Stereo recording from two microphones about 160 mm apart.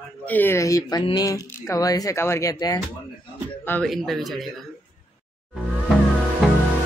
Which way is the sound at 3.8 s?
Centre (ahead or behind).